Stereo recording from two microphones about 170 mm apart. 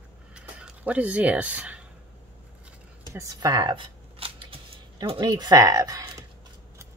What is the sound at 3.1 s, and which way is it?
Shuffling cards, 20° right (ahead or behind).